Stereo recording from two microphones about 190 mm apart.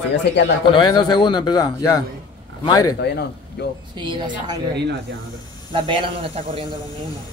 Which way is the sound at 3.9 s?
25° right (ahead or behind).